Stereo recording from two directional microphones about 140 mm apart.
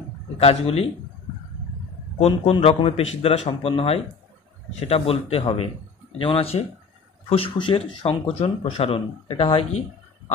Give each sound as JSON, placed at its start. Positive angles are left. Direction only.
{"t": 0.4, "sound": "a man's voice", "side_deg": 45}
{"t": 2.1, "sound": "a man's voice", "side_deg": 50}